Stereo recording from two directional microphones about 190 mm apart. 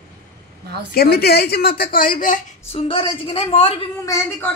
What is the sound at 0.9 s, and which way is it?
A woman's voice, 55° left (ahead or behind).